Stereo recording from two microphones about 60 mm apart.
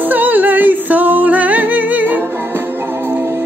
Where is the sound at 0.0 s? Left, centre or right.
Right.